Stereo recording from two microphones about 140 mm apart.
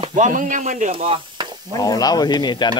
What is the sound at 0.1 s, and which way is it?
Speech, 65° right (ahead or behind).